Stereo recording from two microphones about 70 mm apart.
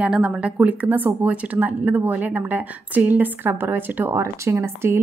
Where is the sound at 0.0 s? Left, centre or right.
Centre.